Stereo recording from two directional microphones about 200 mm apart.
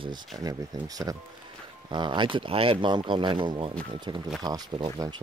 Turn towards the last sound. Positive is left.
turn(degrees=-20)  # may be behind; listen again after turning